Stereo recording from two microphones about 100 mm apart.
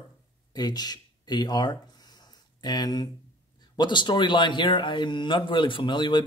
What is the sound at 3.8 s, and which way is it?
A man's voice, 50° left (ahead or behind).